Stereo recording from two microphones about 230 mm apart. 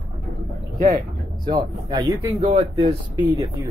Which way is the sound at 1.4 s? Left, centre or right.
Centre.